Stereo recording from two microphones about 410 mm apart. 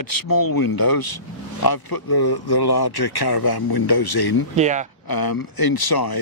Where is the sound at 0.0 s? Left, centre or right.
Left.